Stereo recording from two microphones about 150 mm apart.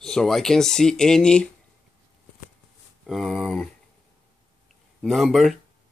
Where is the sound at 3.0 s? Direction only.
Centre (ahead or behind).